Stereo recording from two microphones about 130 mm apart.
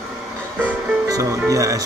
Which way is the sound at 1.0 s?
25° right (ahead or behind).